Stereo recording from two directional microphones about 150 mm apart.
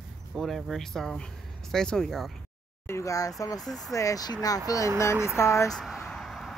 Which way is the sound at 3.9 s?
20° left (ahead or behind).